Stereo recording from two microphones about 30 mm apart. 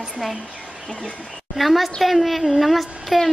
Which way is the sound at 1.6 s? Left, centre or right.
Centre.